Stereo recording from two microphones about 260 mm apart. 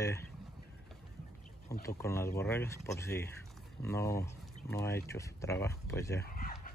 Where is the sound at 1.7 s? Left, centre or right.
Centre.